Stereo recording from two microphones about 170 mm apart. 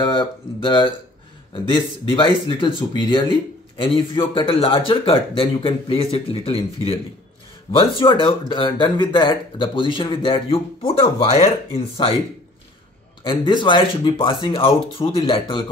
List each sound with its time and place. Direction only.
0.0 s speech: 25° left (ahead or behind)
13.2 s speech: 30° left (ahead or behind)